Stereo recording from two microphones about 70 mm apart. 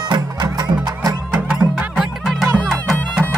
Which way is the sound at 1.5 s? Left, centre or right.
Centre.